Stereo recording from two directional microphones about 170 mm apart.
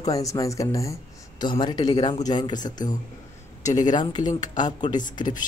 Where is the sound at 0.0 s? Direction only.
20° left (ahead or behind).